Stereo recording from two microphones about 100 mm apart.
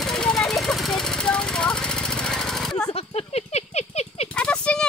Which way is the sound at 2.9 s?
90° left.